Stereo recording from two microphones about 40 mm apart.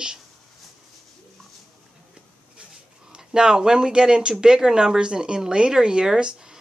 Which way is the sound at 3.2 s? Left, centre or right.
Centre.